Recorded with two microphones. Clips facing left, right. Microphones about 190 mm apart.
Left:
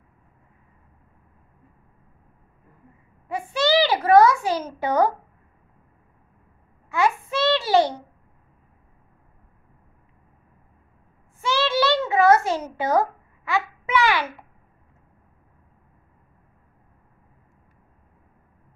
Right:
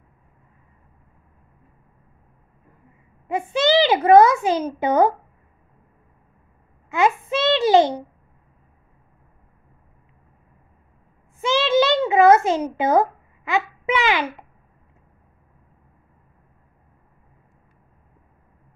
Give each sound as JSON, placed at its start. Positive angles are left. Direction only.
{"t": 3.3, "sound": "a child's voice", "side_deg": -20}
{"t": 6.9, "sound": "child singing", "side_deg": -20}
{"t": 11.4, "sound": "a sound", "side_deg": -20}